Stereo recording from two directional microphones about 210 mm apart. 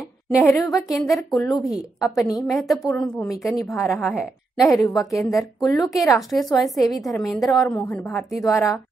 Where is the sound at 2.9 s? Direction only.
5° left (ahead or behind).